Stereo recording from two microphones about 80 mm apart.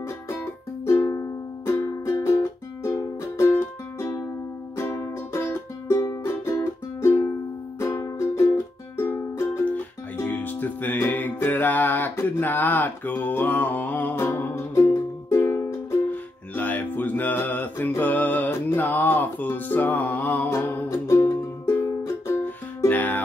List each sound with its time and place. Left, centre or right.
0.8 s music: left
4.7 s music: left
16.1 s music: left
20.4 s music: left
22.8 s music: left